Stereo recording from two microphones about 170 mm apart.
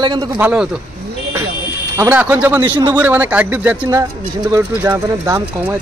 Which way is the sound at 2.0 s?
15° right (ahead or behind).